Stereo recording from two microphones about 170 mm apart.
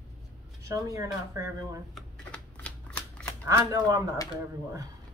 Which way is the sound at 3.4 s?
15° right (ahead or behind).